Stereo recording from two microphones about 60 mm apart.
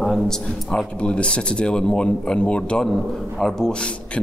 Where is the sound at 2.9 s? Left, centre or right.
Centre.